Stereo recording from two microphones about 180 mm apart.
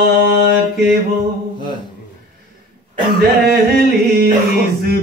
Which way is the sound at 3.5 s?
60° right (ahead or behind).